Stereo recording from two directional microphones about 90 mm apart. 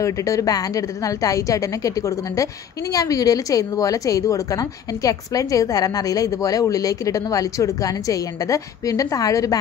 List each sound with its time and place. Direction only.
0.0 s a woman's voice: 40° left (ahead or behind)